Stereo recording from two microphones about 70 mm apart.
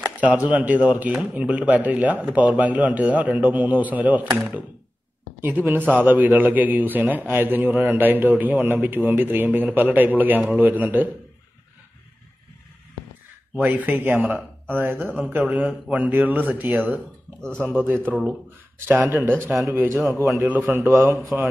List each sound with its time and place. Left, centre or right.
0.2 s a man's voice: right
5.4 s a man's voice: right
13.6 s a man's voice: right
17.4 s speech: centre
17.7 s a man's voice: right
20.9 s a man's voice: right